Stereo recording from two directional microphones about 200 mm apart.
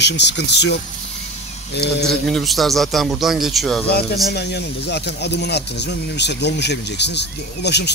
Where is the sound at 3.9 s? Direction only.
55° left (ahead or behind).